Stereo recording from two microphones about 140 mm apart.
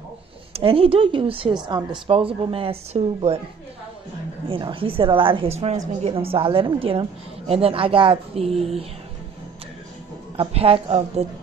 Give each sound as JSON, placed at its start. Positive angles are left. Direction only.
{"t": 0.5, "sound": "a woman's voice", "side_deg": -40}
{"t": 4.5, "sound": "a woman's voice", "side_deg": -35}
{"t": 10.3, "sound": "speech", "side_deg": -45}